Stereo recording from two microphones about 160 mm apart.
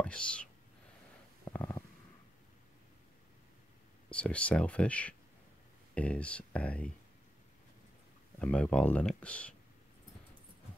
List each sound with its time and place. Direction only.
0.0 s speech: 5° left (ahead or behind)
1.4 s stomach rumble: 15° left (ahead or behind)
4.1 s speech: 5° left (ahead or behind)
8.4 s speech: 5° left (ahead or behind)